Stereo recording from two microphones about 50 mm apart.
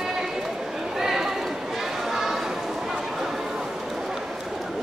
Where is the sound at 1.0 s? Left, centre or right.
Centre.